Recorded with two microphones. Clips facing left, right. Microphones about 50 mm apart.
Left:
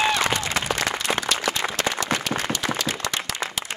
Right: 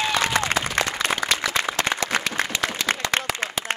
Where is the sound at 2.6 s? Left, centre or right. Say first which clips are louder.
Right 2 dB; right.